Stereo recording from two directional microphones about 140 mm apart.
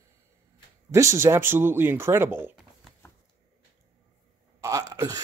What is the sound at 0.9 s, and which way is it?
Speech, 20° right (ahead or behind).